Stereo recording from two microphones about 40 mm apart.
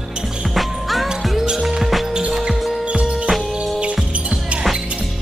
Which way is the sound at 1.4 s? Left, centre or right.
Centre.